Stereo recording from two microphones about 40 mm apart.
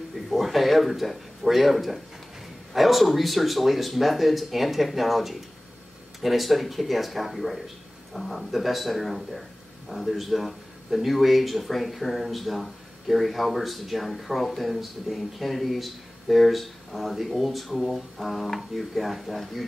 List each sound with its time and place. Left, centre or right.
0.1 s speech: centre